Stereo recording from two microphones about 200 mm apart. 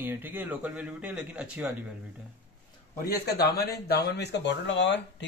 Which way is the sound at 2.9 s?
50° left (ahead or behind).